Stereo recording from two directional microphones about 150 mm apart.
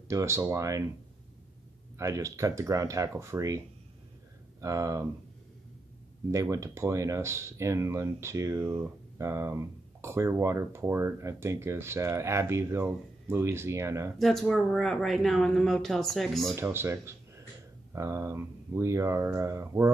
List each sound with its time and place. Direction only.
0.1 s speech: 20° right (ahead or behind)
2.0 s speech: 20° right (ahead or behind)
6.3 s speech: 20° right (ahead or behind)
14.1 s speech: centre (ahead or behind)
16.5 s speech: 15° right (ahead or behind)